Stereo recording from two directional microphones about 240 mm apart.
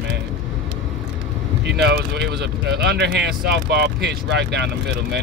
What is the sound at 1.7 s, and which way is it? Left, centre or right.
Speech, right.